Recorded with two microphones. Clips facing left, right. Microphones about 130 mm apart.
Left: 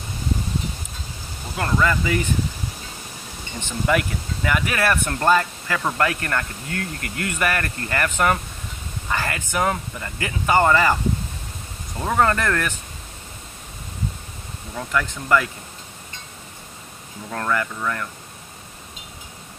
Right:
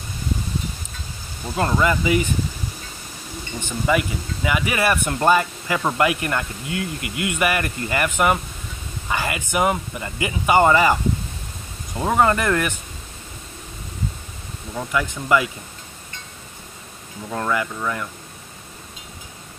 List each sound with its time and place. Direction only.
1.6 s speech: 20° right (ahead or behind)
3.6 s speech: 5° right (ahead or behind)
12.0 s speech: 15° right (ahead or behind)
14.8 s speech: 10° right (ahead or behind)
17.3 s speech: 10° right (ahead or behind)